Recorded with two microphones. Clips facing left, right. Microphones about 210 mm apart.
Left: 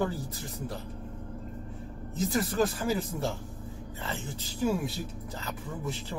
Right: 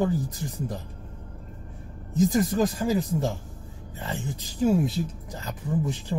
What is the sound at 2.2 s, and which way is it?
Speech, 15° right (ahead or behind).